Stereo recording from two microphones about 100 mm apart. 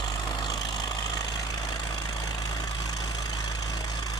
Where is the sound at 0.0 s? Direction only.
45° left (ahead or behind).